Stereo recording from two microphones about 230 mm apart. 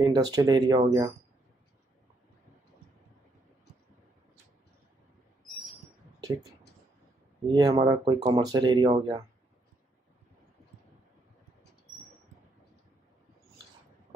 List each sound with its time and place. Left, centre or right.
0.0 s speech: centre
7.5 s speech: centre